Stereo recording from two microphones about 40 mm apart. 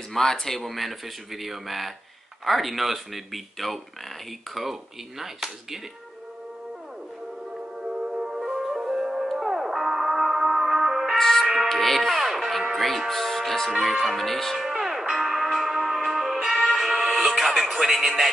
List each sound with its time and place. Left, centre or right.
0.1 s speech: centre
5.2 s speech: centre
7.8 s music: centre
11.1 s music: centre
11.4 s music: centre
11.7 s music: centre
13.1 s speech: centre
14.6 s music: centre
17.9 s speech: centre